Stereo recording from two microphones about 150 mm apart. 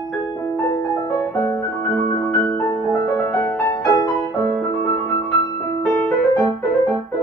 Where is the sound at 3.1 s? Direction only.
15° left (ahead or behind).